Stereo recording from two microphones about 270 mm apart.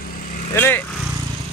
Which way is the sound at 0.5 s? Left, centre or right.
Centre.